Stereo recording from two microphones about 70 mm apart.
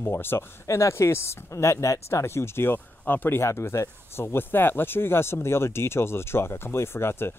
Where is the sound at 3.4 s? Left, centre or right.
Left.